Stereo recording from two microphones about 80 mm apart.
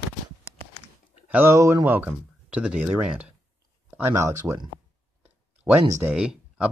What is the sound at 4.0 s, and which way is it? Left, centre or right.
Speech, right.